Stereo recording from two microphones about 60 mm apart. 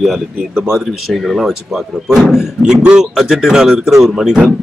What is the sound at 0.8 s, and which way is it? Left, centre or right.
A man's voice, centre.